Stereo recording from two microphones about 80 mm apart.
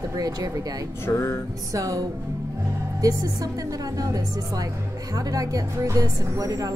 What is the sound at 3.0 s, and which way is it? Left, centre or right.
A woman's voice, right.